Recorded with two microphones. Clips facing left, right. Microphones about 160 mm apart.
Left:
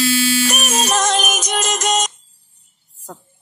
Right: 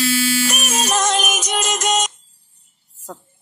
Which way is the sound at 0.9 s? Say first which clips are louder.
Even; 35° left (ahead or behind).